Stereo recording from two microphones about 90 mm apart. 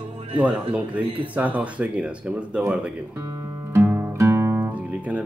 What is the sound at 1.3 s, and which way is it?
Speech, 15° right (ahead or behind).